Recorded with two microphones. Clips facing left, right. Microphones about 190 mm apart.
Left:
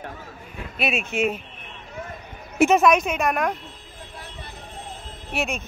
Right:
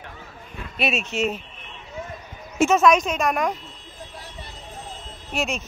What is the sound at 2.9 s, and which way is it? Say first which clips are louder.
Speech: right 1 dB; 55° left (ahead or behind).